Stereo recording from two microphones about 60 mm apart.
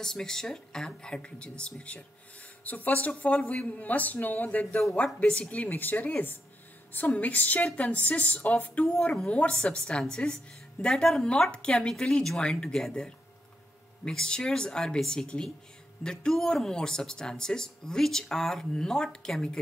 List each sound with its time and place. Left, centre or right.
0.0 s speech: centre